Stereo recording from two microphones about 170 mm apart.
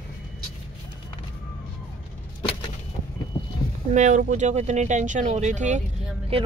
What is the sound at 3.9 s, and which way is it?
Speech, 45° right (ahead or behind).